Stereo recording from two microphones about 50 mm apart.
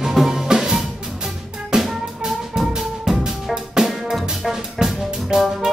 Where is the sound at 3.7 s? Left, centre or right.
Centre.